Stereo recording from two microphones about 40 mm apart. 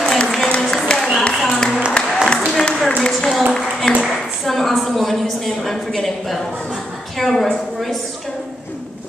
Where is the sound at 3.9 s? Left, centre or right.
Centre.